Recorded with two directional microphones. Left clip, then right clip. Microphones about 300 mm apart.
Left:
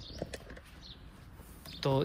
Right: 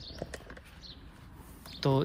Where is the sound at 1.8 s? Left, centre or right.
Centre.